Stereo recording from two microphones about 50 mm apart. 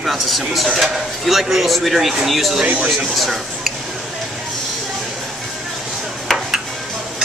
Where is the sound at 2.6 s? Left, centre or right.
Right.